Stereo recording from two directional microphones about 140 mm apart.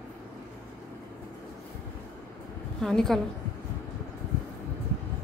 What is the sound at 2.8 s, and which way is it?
Speech, 5° left (ahead or behind).